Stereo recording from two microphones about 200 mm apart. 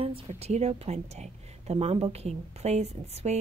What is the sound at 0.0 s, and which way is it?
A woman's voice, 30° right (ahead or behind).